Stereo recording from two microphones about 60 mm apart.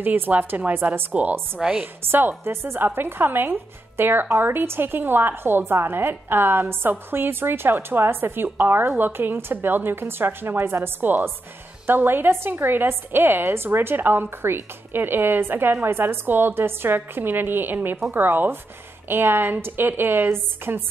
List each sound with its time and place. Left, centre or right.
0.0 s a woman's voice: right
1.6 s a woman's voice: centre
2.0 s a woman's voice: right